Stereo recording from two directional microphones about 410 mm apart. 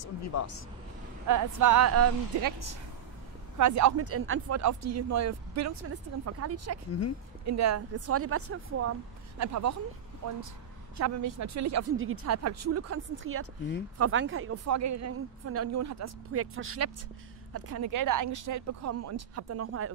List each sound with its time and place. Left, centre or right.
0.0 s speech: left
1.2 s speech: right
2.4 s speech: right
11.0 s speech: right